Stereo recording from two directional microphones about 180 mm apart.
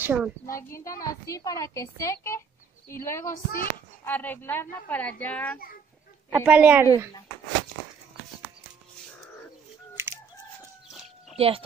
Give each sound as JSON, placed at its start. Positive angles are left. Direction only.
{"t": 0.0, "sound": "a child's voice", "side_deg": -10}
{"t": 0.5, "sound": "a woman's voice", "side_deg": 15}
{"t": 6.3, "sound": "a woman's voice", "side_deg": -10}
{"t": 10.0, "sound": "crowing", "side_deg": -15}
{"t": 11.3, "sound": "speech", "side_deg": -30}